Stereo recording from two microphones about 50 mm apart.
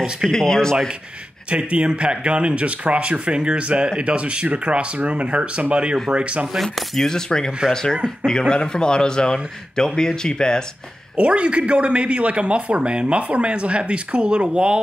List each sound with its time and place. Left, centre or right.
0.3 s a man's voice: centre
1.5 s speech: right
6.5 s a man's voice: centre
11.1 s speech: right